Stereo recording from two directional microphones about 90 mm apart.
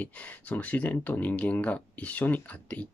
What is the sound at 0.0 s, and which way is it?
Speech, 15° left (ahead or behind).